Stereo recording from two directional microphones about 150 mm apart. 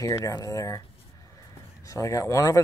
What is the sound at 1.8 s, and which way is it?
Speech, 20° left (ahead or behind).